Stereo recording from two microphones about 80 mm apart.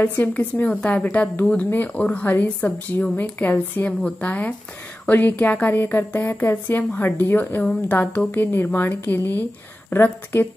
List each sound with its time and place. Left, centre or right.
0.0 s a woman's voice: left